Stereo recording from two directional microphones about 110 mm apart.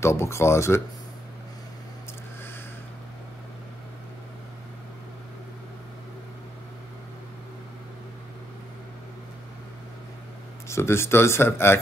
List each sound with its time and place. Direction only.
0.0 s speech: 25° left (ahead or behind)
10.7 s speech: 25° left (ahead or behind)